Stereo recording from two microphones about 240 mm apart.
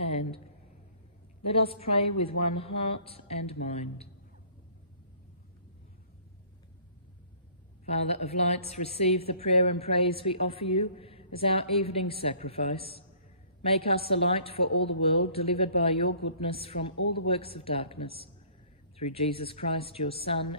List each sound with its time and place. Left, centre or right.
0.0 s a sound: left
1.4 s a woman's voice: left
7.8 s a woman's voice: left